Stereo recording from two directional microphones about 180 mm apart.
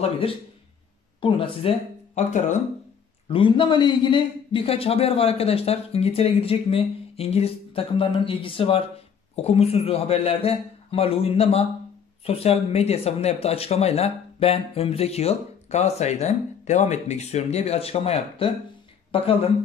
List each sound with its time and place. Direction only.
1.2 s speech: 30° left (ahead or behind)
2.1 s speech: 40° left (ahead or behind)
3.3 s speech: 30° left (ahead or behind)